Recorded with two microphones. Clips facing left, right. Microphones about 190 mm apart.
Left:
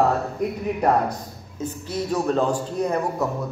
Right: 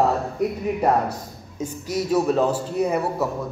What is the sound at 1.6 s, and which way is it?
A man's voice, 10° right (ahead or behind).